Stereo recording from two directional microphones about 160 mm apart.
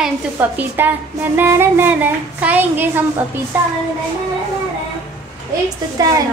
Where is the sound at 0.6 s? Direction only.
10° right (ahead or behind).